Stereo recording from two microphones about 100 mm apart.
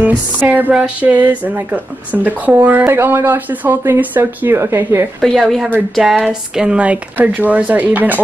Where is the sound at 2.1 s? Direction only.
15° right (ahead or behind).